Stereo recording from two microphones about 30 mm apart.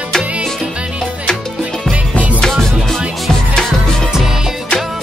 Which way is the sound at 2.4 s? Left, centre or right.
Centre.